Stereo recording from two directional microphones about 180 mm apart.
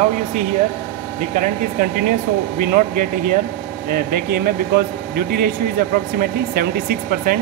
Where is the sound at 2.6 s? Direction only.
55° right (ahead or behind).